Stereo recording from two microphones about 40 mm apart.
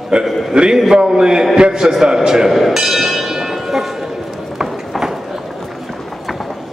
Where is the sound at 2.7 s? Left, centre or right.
Centre.